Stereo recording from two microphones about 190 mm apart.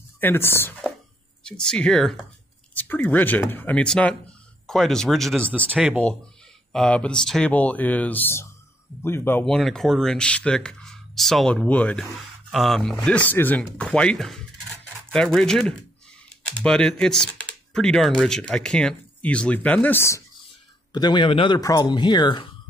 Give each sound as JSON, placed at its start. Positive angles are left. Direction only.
{"t": 0.2, "sound": "speech", "side_deg": 10}
{"t": 5.8, "sound": "a man's voice", "side_deg": -5}